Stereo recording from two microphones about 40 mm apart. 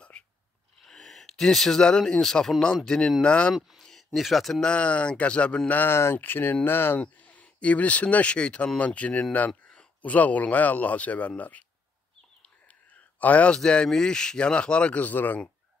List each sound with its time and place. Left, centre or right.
0.8 s speech: centre
4.1 s speech: centre
4.6 s speech: left
5.9 s speech: left
6.2 s speech: left
7.0 s speech: left
13.2 s speech: left
13.6 s speech: left
15.0 s speech: left